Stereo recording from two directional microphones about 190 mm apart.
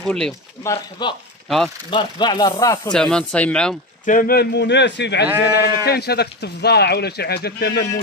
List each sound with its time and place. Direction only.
0.0 s speech: 5° left (ahead or behind)
0.7 s speech: 25° left (ahead or behind)
2.9 s speech: 5° left (ahead or behind)
4.0 s speech: 45° left (ahead or behind)